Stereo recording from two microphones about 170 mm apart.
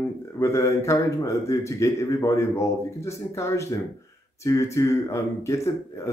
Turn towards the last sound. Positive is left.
turn(degrees=15)  # may be behind; listen again after turning